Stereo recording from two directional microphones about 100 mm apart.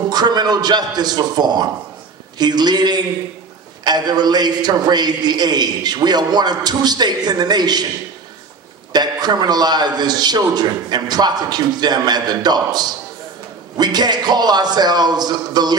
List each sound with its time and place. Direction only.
0.1 s a man's voice: 45° right (ahead or behind)
8.9 s a man's voice: 45° right (ahead or behind)